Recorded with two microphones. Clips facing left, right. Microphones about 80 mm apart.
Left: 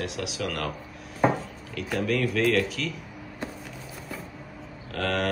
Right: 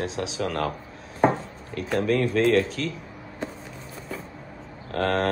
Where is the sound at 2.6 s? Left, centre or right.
Left.